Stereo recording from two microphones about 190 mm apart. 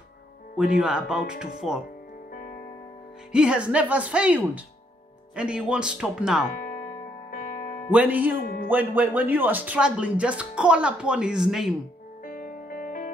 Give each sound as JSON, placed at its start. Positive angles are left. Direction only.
{"t": 0.6, "sound": "speech", "side_deg": -5}
{"t": 2.3, "sound": "music", "side_deg": 45}
{"t": 3.3, "sound": "speech", "side_deg": -5}
{"t": 6.5, "sound": "music", "side_deg": 45}
{"t": 7.9, "sound": "speech", "side_deg": -10}
{"t": 12.3, "sound": "music", "side_deg": 45}